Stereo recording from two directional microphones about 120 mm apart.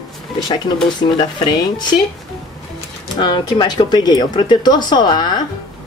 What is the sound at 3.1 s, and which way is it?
Speech, 40° left (ahead or behind).